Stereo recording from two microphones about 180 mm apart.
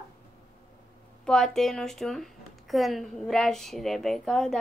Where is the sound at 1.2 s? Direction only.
5° left (ahead or behind).